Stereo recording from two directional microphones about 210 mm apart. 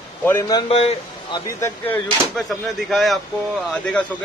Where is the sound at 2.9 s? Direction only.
Centre (ahead or behind).